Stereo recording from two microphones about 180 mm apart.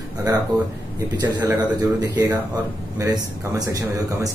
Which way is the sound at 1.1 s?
25° right (ahead or behind).